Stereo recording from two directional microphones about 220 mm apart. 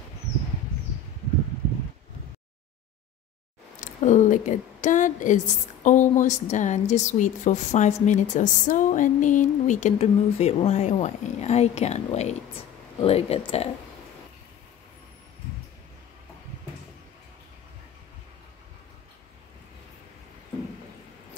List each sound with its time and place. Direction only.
3.8 s a woman's voice: 35° left (ahead or behind)